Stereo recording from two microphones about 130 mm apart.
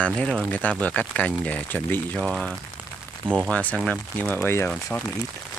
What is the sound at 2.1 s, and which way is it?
Speech, centre (ahead or behind).